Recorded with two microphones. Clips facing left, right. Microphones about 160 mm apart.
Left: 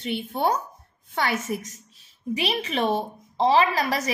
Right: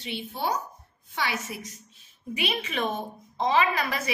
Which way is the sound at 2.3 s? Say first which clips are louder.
Left 4 dB; 35° left (ahead or behind).